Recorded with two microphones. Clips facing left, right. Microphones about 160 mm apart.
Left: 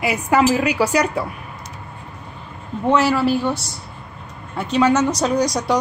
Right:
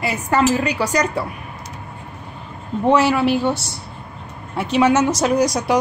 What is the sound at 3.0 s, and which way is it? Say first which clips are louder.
Speech: right 1 dB; 20° right (ahead or behind).